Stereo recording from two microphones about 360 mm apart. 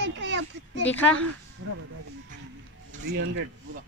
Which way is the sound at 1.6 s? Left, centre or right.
Right.